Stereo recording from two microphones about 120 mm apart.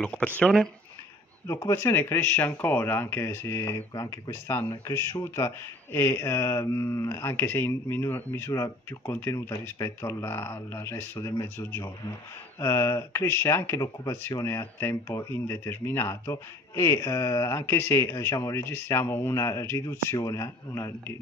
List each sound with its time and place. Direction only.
0.0 s speech: 10° left (ahead or behind)
1.5 s speech: 25° left (ahead or behind)